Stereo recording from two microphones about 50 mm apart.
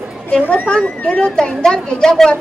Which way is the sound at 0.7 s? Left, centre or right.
Centre.